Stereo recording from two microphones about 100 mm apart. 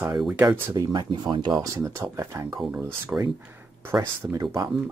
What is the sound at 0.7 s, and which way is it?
Speech, 45° right (ahead or behind).